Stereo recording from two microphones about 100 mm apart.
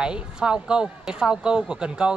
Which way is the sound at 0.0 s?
10° right (ahead or behind).